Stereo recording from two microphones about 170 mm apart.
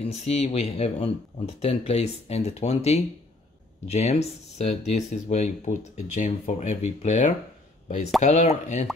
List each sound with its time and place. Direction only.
0.0 s speech: 40° left (ahead or behind)